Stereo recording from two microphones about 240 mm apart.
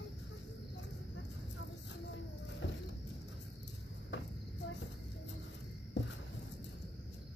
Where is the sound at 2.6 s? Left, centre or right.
Left.